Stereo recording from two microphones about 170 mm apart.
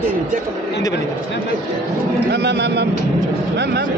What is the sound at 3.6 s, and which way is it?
Speech, 70° right (ahead or behind).